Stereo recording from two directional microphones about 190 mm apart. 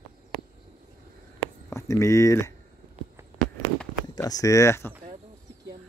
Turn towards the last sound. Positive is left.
turn(degrees=15)  # may be behind; listen again after turning